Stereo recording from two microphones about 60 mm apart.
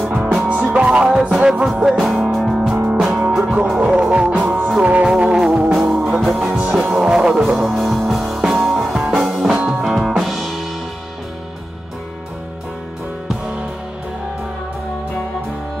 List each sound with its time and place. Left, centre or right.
0.0 s music: centre
0.5 s music: right
1.5 s music: centre
3.0 s music: centre
5.0 s music: centre
7.6 s music: centre